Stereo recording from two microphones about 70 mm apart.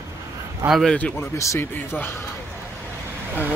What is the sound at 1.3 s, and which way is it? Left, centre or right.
Speech, left.